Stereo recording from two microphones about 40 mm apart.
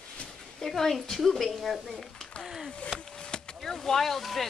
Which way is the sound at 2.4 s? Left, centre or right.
Centre.